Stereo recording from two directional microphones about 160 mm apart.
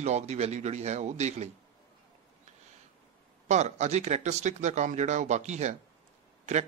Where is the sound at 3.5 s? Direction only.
45° right (ahead or behind).